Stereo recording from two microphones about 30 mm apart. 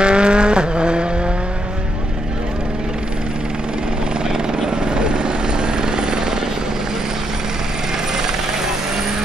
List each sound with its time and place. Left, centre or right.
0.0 s vehicle: right
4.5 s helicopter: right